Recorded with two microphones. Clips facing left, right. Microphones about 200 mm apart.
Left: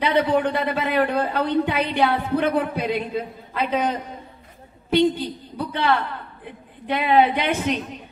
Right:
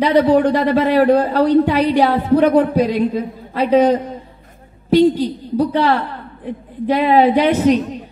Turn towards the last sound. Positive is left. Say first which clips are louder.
# right 10 dB
turn(degrees=-40)  # may be behind; listen again after turning